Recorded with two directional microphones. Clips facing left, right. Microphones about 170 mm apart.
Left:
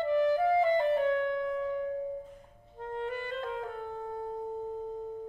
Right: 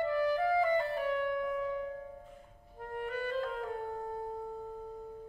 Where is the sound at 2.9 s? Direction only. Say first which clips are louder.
Left 1 dB; 25° left (ahead or behind).